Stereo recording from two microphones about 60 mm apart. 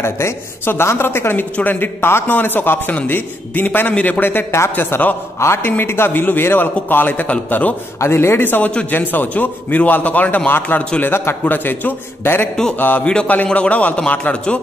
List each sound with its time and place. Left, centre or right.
0.0 s a woman's voice: left
4.2 s a man's voice: left
5.4 s a woman's voice: left
8.0 s a man's voice: left
11.0 s a man's voice: left
13.0 s a man's voice: centre